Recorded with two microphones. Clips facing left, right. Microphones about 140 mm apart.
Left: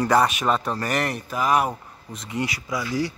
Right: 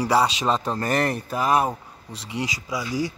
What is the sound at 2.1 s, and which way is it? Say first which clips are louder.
Speech: left 1 dB; 75° right (ahead or behind).